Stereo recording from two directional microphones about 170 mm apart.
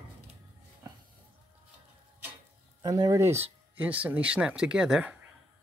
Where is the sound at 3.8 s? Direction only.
10° right (ahead or behind).